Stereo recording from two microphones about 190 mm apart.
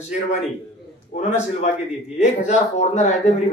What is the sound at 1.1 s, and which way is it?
A man's voice, 40° left (ahead or behind).